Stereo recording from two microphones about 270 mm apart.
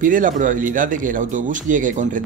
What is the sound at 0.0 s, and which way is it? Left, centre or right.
Speech, right.